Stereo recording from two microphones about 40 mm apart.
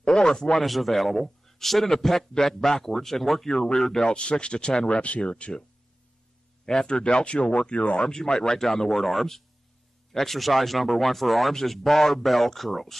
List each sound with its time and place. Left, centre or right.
0.0 s speech: centre
0.7 s a man's voice: centre
3.5 s speech: left
5.3 s speech: left
6.6 s speech: centre
8.1 s a man's voice: centre